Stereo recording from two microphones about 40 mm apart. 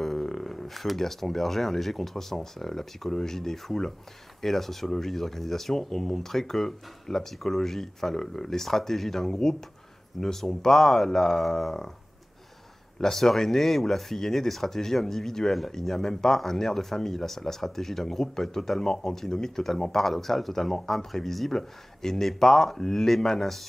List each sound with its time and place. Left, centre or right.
0.0 s speech: centre
13.0 s speech: centre